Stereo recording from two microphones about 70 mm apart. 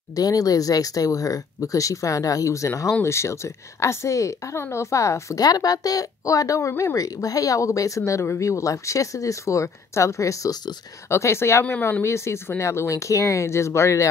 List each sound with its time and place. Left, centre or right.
0.1 s speech: left
5.4 s speech: left
8.0 s speech: left
11.1 s speech: left